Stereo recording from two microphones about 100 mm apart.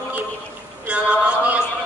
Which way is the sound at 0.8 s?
15° right (ahead or behind).